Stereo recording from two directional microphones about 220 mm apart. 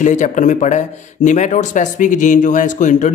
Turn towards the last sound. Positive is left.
turn(degrees=35)  # may be behind; listen again after turning